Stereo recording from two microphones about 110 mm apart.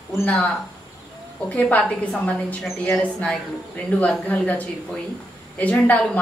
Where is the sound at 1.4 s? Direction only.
10° left (ahead or behind).